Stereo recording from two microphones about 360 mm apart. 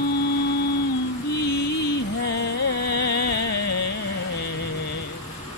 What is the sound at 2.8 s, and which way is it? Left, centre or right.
Music, left.